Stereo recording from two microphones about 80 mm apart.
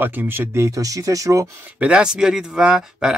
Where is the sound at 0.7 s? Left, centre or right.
Right.